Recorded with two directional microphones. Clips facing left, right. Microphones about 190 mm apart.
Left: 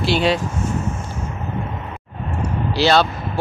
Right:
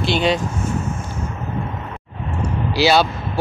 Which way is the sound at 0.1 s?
Centre (ahead or behind).